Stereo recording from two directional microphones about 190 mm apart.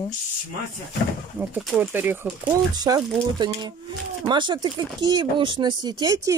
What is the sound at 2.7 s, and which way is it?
Speech, 20° right (ahead or behind).